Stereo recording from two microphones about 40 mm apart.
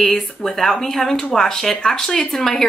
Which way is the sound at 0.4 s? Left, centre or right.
Centre.